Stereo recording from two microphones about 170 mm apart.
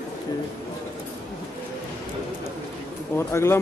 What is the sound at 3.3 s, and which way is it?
Speech, 15° left (ahead or behind).